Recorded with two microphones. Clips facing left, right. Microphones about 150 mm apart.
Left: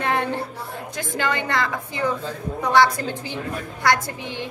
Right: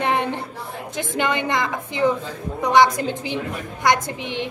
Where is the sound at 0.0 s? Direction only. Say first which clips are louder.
Right 1 dB; 20° right (ahead or behind).